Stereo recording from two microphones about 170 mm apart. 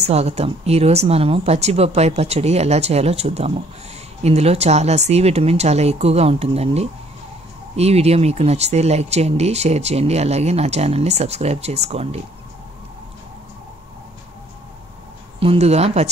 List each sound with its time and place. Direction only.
0.0 s speech: 40° right (ahead or behind)
15.4 s speech: 40° right (ahead or behind)